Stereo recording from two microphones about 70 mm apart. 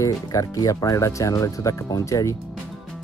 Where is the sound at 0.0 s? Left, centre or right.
Left.